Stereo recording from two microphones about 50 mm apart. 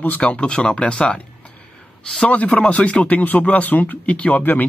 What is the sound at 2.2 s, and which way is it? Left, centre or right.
Speech, left.